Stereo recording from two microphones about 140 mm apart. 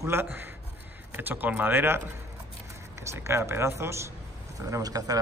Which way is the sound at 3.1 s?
20° right (ahead or behind).